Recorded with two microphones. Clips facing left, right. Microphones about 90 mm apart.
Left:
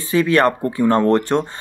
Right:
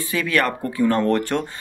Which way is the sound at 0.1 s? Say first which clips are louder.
Left 7 dB; 30° left (ahead or behind).